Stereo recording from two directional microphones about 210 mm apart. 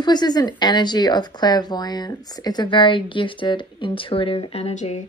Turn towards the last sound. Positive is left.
turn(degrees=30)  # may be behind; listen again after turning